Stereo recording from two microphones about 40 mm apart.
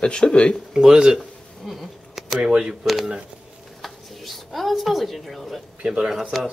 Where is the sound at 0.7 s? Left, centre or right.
Centre.